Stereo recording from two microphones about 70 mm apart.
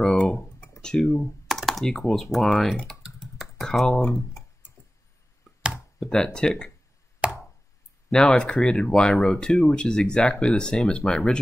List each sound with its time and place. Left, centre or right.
0.0 s computer keyboard: centre
2.3 s speech: centre
3.0 s computer keyboard: centre
5.9 s speech: centre
7.2 s a sound: centre
8.1 s speech: centre